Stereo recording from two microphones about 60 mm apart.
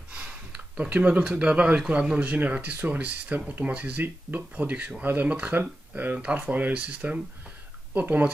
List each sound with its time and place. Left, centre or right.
0.1 s speech: right
6.1 s speech: centre